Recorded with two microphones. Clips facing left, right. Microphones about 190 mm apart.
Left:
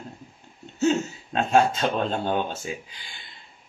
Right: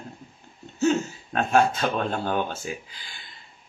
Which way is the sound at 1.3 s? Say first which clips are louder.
Left 1 dB; 20° left (ahead or behind).